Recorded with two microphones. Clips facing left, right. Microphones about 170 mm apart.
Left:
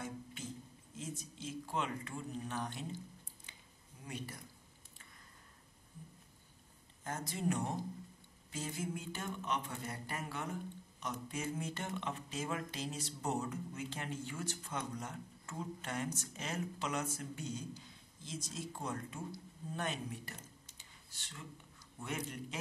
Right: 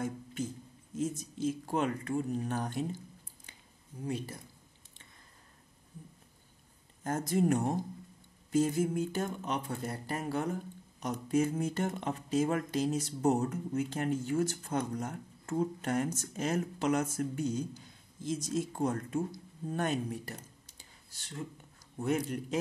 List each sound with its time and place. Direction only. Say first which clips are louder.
0.0 s music: right 9 dB; 45° right (ahead or behind)
0.9 s speech: right 11 dB; 45° right (ahead or behind)
4.0 s speech: right 9 dB; 30° right (ahead or behind)
7.0 s speech: right 11 dB; 45° right (ahead or behind)